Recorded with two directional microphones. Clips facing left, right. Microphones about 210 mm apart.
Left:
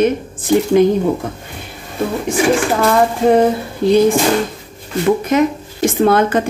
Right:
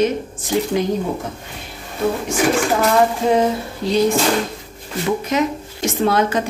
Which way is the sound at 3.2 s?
55° left (ahead or behind).